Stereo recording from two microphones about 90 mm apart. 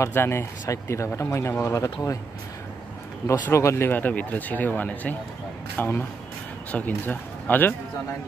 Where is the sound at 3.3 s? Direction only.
35° left (ahead or behind).